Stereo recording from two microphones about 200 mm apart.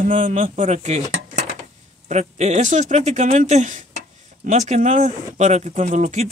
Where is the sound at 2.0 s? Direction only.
35° right (ahead or behind).